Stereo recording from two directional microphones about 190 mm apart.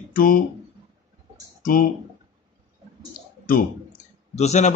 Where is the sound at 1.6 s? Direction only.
45° left (ahead or behind).